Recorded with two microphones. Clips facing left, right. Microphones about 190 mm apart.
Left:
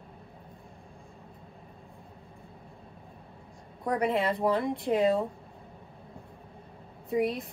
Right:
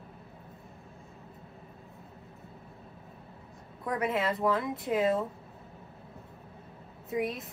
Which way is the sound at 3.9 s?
Centre (ahead or behind).